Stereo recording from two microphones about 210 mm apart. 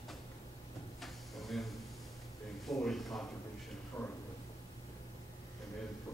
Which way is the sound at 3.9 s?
15° left (ahead or behind).